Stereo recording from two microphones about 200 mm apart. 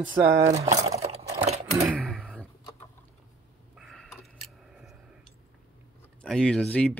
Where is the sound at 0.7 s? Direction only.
30° right (ahead or behind).